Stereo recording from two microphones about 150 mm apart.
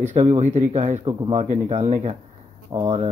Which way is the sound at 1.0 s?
35° right (ahead or behind).